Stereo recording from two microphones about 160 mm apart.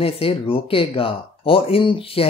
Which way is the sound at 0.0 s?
35° left (ahead or behind).